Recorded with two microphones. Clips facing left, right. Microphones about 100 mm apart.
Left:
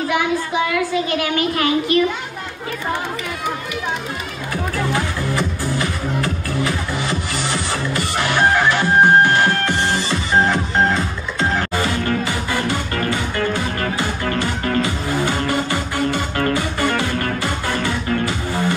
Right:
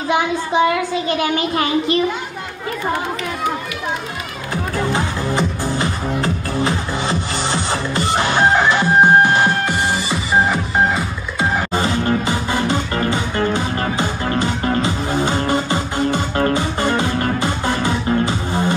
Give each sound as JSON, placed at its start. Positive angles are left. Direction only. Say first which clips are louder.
{"t": 0.1, "sound": "a child's voice", "louder": "right 5 dB", "side_deg": -25}
{"t": 4.7, "sound": "music", "louder": "right 2 dB", "side_deg": -25}
{"t": 11.7, "sound": "music", "louder": "right 2 dB", "side_deg": -25}